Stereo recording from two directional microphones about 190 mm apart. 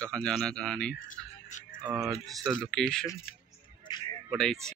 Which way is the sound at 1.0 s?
45° left (ahead or behind).